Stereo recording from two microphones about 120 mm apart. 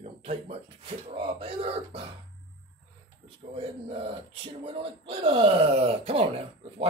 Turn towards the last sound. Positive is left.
turn(degrees=-55)  # may be behind; listen again after turning